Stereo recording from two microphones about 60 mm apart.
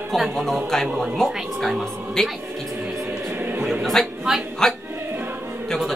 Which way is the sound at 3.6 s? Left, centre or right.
Centre.